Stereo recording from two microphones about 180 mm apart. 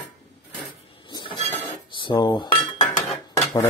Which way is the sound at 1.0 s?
25° left (ahead or behind).